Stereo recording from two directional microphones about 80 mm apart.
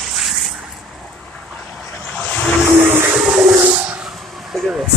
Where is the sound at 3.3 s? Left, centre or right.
Right.